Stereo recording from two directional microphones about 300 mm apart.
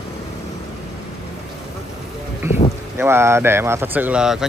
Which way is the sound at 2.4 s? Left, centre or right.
Left.